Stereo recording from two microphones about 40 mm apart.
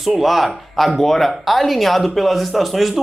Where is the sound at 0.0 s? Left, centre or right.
Centre.